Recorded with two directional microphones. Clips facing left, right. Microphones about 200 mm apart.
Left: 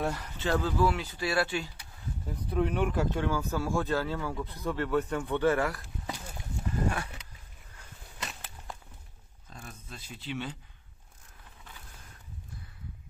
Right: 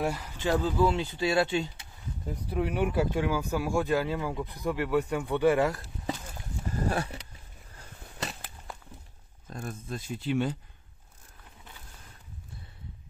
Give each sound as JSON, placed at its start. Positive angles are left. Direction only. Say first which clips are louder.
{"t": 0.0, "sound": "speech", "louder": "right 2 dB", "side_deg": -10}
{"t": 2.5, "sound": "speech", "louder": "right 1 dB", "side_deg": -10}
{"t": 6.7, "sound": "roaring cats", "louder": "right 2 dB", "side_deg": -35}
{"t": 7.7, "sound": "a sound", "louder": "right 4 dB", "side_deg": -35}
{"t": 9.5, "sound": "speech", "louder": "right 10 dB", "side_deg": -50}